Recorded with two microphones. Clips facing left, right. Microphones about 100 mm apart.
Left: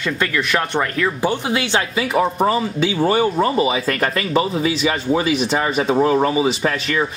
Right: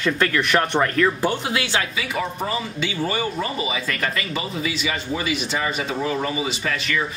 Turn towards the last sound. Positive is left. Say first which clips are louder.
# left 5 dB
turn(degrees=40)  # may be behind; listen again after turning